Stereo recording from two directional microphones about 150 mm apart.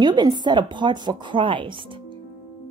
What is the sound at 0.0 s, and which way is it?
Speech, 30° right (ahead or behind).